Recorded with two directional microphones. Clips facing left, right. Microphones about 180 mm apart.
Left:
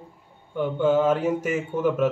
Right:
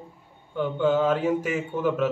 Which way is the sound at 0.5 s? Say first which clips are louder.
Left 2 dB; 10° left (ahead or behind).